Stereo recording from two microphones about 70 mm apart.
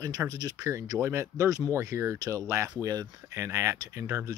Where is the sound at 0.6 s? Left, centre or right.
Right.